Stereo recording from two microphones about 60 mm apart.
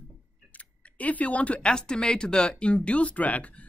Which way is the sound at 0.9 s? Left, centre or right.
Left.